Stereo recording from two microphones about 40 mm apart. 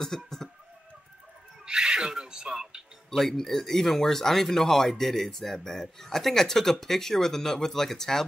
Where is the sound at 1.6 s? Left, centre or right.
Centre.